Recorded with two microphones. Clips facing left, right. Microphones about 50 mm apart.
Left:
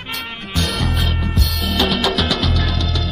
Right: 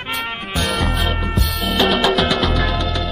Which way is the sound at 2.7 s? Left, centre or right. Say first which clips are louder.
Right 2 dB; right.